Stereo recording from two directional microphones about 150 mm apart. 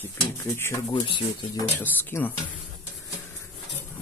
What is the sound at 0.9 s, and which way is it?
Speech, 30° left (ahead or behind).